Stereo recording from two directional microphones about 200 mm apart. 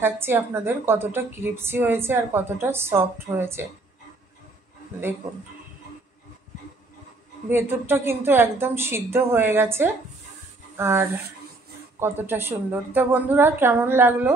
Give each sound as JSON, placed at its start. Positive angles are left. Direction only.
{"t": 0.0, "sound": "a woman's voice", "side_deg": -10}
{"t": 7.4, "sound": "a woman's voice", "side_deg": -10}